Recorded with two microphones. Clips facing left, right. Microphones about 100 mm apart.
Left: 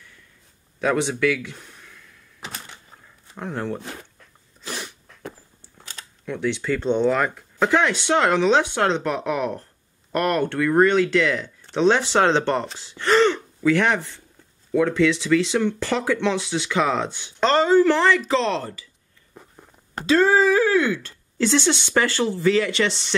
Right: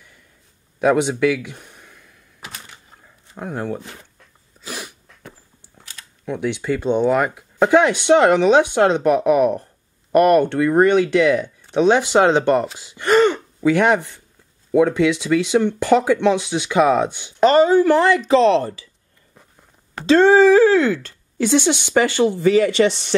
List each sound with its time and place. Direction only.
0.7 s speech: 15° right (ahead or behind)
3.3 s speech: 10° right (ahead or behind)
4.6 s sneeze: 5° right (ahead or behind)
6.2 s speech: 15° right (ahead or behind)
18.4 s speech: 55° right (ahead or behind)
20.1 s speech: 30° right (ahead or behind)
21.4 s speech: 15° right (ahead or behind)